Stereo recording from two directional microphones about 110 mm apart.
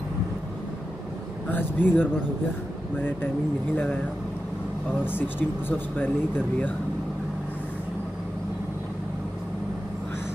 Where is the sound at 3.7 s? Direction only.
15° left (ahead or behind).